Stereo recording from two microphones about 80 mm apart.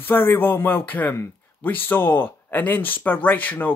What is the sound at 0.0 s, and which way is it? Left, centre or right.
Speech, left.